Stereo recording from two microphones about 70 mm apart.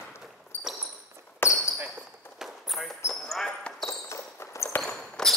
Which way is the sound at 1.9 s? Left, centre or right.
Centre.